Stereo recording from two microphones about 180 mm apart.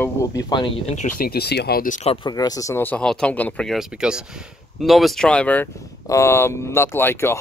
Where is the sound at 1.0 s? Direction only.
50° left (ahead or behind).